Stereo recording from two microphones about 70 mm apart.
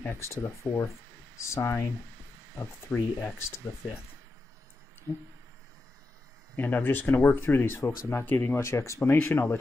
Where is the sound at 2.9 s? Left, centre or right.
Left.